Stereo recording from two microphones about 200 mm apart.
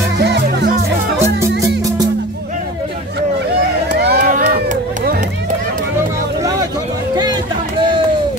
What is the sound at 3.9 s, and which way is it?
Crowd, 55° right (ahead or behind).